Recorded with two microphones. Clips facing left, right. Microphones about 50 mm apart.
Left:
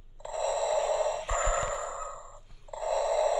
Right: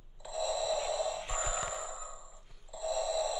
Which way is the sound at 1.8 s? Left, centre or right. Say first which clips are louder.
Left 7 dB; left.